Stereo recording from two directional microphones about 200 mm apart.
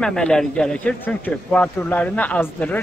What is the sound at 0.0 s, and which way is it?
A man's voice, 5° left (ahead or behind).